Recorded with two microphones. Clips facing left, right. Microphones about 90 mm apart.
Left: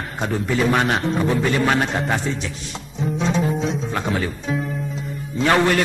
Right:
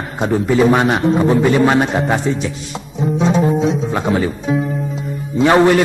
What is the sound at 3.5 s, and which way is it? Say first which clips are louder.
Speech: right 7 dB; 10° right (ahead or behind).